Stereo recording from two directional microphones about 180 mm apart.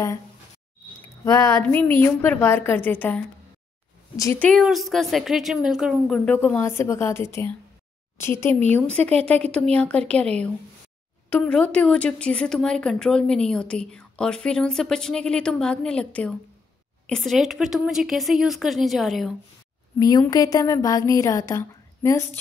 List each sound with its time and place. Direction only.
1.2 s a woman's voice: 15° left (ahead or behind)
4.2 s a woman's voice: 15° left (ahead or behind)
4.5 s a woman's voice: centre (ahead or behind)
20.0 s a woman's voice: 20° left (ahead or behind)